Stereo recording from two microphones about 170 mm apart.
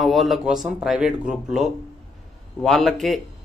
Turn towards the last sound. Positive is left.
turn(degrees=0)  # may be behind; listen again after turning